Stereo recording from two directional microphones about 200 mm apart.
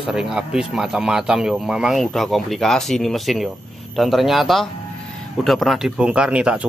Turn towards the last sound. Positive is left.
turn(degrees=-5)  # may be behind; listen again after turning